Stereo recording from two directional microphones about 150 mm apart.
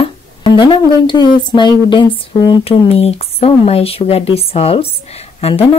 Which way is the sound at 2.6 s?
40° left (ahead or behind).